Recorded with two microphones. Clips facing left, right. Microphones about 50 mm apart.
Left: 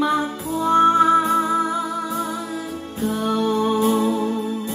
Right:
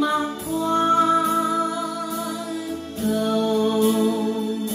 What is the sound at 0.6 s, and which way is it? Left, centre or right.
Music, centre.